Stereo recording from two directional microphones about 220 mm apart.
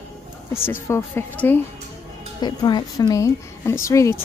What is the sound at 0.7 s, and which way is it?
Speech, 10° left (ahead or behind).